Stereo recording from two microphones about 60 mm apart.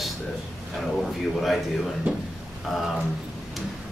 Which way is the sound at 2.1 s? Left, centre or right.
Centre.